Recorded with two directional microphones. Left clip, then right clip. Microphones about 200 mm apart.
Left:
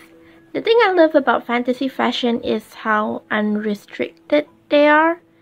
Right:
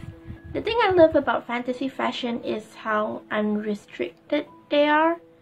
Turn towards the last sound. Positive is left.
turn(degrees=30)  # may be behind; listen again after turning